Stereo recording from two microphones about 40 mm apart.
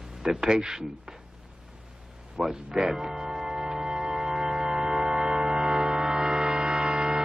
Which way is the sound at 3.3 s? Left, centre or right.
Centre.